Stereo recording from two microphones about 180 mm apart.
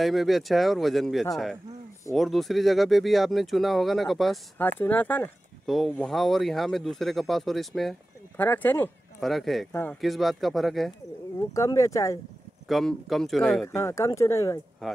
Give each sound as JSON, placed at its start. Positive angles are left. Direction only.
{"t": 0.0, "sound": "speech", "side_deg": 0}
{"t": 4.6, "sound": "speech", "side_deg": 10}
{"t": 9.2, "sound": "speech", "side_deg": 0}
{"t": 11.3, "sound": "speech", "side_deg": 15}
{"t": 12.6, "sound": "speech", "side_deg": 0}
{"t": 13.7, "sound": "speech", "side_deg": 15}
{"t": 14.8, "sound": "speech", "side_deg": 0}